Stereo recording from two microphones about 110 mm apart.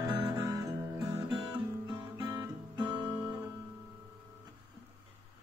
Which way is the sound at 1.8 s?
45° right (ahead or behind).